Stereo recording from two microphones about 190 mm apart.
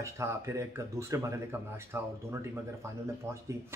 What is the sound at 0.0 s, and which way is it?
Speech, 15° right (ahead or behind).